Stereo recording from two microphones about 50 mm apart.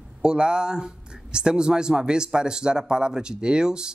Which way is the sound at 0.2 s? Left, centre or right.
Centre.